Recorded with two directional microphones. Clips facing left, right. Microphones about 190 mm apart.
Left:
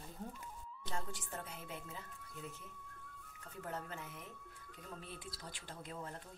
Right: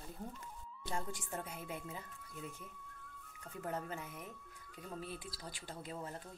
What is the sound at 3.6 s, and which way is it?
Speech, 15° right (ahead or behind).